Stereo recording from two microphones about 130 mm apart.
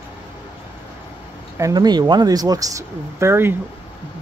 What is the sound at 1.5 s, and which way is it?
Speech, 30° right (ahead or behind).